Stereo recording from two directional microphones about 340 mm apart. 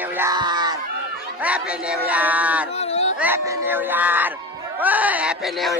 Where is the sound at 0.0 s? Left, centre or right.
Centre.